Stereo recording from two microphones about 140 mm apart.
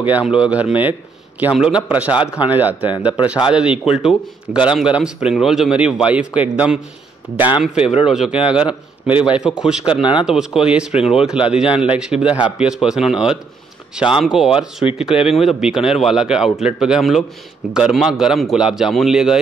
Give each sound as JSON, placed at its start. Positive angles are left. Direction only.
{"t": 0.0, "sound": "a man's voice", "side_deg": -10}
{"t": 7.8, "sound": "speech", "side_deg": 40}
{"t": 8.1, "sound": "a man's voice", "side_deg": -5}
{"t": 10.9, "sound": "speech", "side_deg": 50}
{"t": 11.1, "sound": "a man's voice", "side_deg": -5}